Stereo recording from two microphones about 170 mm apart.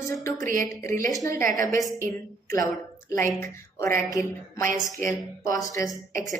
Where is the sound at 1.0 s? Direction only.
20° left (ahead or behind).